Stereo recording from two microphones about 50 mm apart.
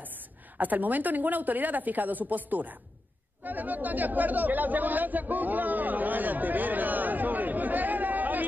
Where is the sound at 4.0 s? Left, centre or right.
Right.